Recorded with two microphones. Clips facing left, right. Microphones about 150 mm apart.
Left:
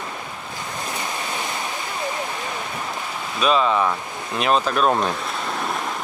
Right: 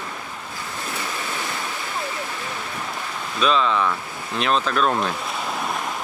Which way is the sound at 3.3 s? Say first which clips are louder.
Left 1 dB; 5° left (ahead or behind).